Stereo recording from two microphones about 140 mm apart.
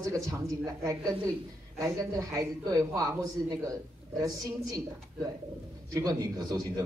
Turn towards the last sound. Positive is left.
turn(degrees=-25)  # may be behind; listen again after turning